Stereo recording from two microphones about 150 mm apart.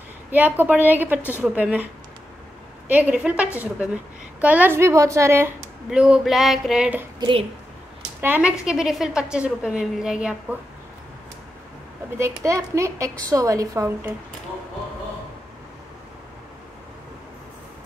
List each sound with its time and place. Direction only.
0.6 s a woman's voice: 10° right (ahead or behind)
2.9 s a woman's voice: 10° right (ahead or behind)
5.9 s a woman's voice: 5° right (ahead or behind)
7.2 s a woman's voice: 35° right (ahead or behind)
8.2 s a woman's voice: 10° right (ahead or behind)
12.2 s a child's voice: 20° right (ahead or behind)